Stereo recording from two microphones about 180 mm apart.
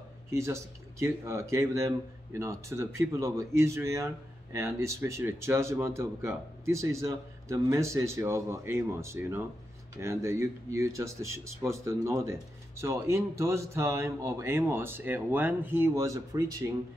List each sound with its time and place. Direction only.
0.3 s speech: 15° right (ahead or behind)